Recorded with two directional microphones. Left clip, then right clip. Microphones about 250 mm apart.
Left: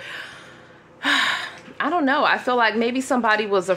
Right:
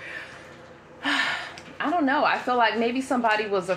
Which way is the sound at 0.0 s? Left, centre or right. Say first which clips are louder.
Left 3 dB; left.